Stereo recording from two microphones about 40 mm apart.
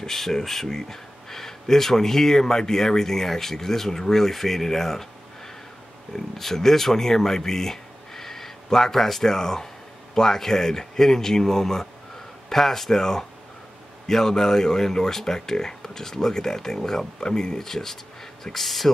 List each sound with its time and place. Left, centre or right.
0.0 s speech: centre
6.1 s speech: centre